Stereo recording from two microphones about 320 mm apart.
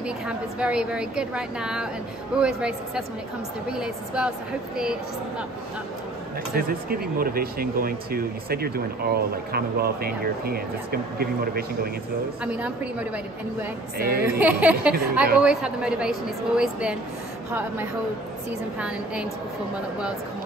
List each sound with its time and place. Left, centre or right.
0.0 s a woman's voice: centre
6.5 s speech: right
12.4 s a woman's voice: centre
13.9 s speech: right
14.4 s a woman's voice: centre